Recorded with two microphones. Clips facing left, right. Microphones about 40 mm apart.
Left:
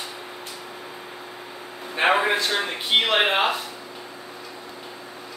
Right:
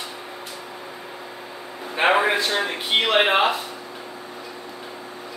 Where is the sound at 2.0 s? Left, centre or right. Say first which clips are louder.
Right 1 dB; centre.